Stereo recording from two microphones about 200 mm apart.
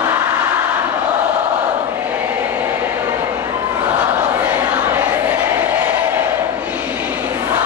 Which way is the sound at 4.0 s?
10° right (ahead or behind).